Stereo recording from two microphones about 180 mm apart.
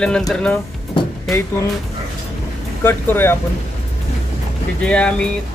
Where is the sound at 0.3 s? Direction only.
5° left (ahead or behind).